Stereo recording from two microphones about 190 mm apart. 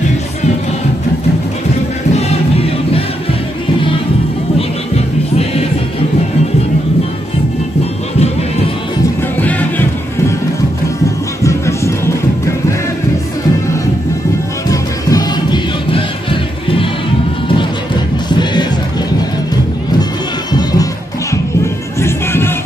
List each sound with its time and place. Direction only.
2.1 s music: 30° left (ahead or behind)
9.4 s music: 10° left (ahead or behind)
11.4 s music: 15° left (ahead or behind)
14.7 s music: 20° left (ahead or behind)
18.3 s music: 25° left (ahead or behind)
22.0 s music: 10° left (ahead or behind)